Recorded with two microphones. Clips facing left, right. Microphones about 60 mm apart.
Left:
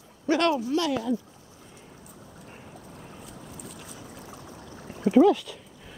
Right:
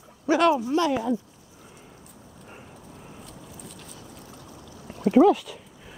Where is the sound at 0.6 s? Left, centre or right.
Right.